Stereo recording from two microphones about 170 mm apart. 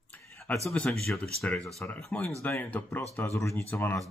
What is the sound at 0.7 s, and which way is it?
Speech, 5° left (ahead or behind).